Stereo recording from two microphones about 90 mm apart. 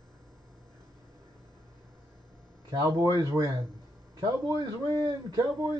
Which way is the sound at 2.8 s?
45° right (ahead or behind).